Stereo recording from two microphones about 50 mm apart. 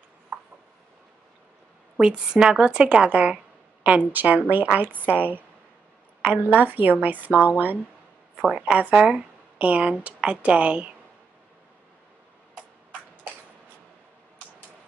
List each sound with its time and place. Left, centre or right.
0.3 s a sound: right
2.0 s speech: centre; by 7.8 s right
8.4 s speech: centre